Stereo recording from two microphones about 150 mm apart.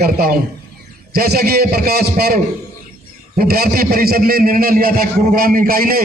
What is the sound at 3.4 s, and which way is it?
A man's voice, 85° right.